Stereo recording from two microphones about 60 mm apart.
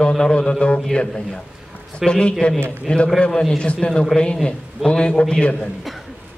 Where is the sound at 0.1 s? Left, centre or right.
Centre.